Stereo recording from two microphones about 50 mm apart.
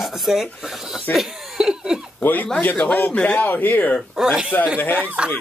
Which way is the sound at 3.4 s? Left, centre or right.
Left.